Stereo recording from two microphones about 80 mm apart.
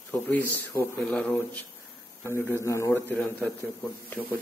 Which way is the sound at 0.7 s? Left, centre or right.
Left.